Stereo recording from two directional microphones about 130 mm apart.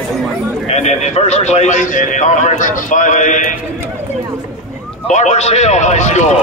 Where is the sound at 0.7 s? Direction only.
60° left (ahead or behind).